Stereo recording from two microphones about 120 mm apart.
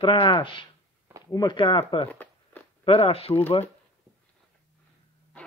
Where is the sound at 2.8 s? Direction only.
50° left (ahead or behind).